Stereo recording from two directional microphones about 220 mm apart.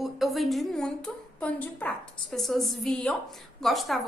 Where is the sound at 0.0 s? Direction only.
Centre (ahead or behind).